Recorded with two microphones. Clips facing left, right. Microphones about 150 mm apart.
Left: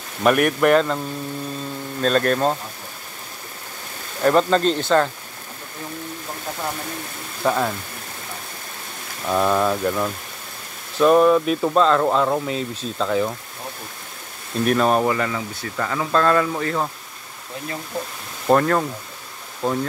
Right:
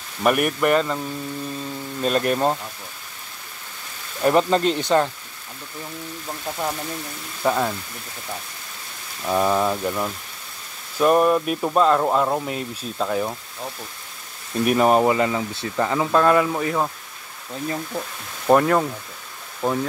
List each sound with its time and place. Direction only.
0.2 s a man's voice: 5° right (ahead or behind)
2.0 s speech: 10° right (ahead or behind)
4.2 s speech: 15° right (ahead or behind)
7.4 s a man's voice: centre (ahead or behind)
9.3 s speech: 5° right (ahead or behind)
14.6 s speech: 15° right (ahead or behind)
18.5 s speech: 5° right (ahead or behind)